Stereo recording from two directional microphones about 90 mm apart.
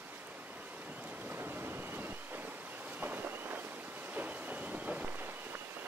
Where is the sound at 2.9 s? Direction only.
20° right (ahead or behind).